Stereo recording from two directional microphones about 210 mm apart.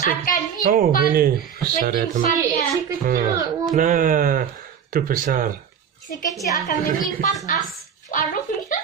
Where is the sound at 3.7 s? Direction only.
40° right (ahead or behind).